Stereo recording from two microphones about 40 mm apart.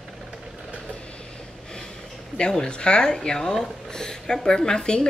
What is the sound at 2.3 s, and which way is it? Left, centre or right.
Speech, left.